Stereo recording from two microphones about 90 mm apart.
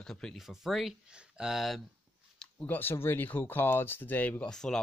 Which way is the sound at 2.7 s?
25° left (ahead or behind).